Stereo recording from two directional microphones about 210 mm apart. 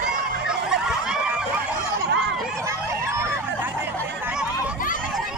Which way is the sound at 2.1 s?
50° right (ahead or behind).